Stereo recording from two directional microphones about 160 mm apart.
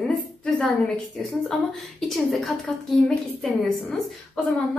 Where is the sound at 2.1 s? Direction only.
Centre (ahead or behind).